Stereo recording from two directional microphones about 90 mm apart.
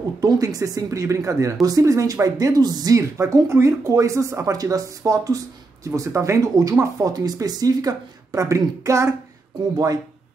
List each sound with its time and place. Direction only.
0.2 s speech: 40° right (ahead or behind)
3.0 s speech: 30° right (ahead or behind)